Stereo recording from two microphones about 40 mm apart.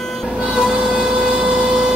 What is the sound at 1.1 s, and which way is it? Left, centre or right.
Vehicle, centre.